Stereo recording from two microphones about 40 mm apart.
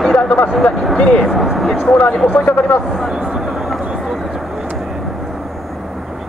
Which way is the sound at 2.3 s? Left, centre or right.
Left.